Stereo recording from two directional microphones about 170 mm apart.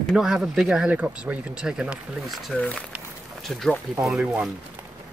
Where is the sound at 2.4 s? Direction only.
5° left (ahead or behind).